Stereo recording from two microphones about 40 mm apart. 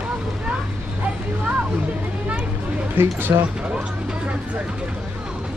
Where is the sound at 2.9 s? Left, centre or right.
Right.